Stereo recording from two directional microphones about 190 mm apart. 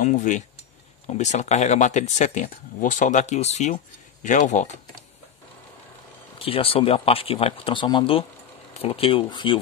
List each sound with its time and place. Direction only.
0.0 s speech: 40° left (ahead or behind)
6.4 s speech: 30° left (ahead or behind)